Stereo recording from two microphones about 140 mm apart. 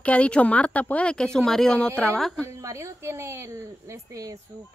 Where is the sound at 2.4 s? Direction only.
20° right (ahead or behind).